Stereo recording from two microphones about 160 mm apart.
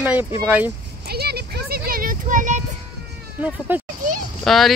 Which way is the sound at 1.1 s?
85° right.